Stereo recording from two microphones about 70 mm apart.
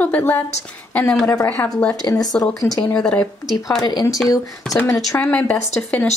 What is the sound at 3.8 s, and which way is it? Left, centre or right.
Speech, left.